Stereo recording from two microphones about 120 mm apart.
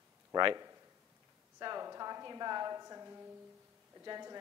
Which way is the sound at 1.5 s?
30° right (ahead or behind).